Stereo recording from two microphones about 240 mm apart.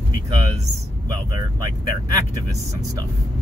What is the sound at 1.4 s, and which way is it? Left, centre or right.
Speech, centre.